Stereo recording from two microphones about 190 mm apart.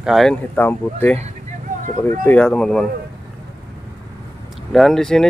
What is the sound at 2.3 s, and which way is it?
Speech, 5° left (ahead or behind).